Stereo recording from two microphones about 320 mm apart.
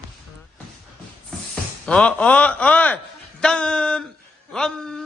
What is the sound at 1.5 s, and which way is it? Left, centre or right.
Speech, centre.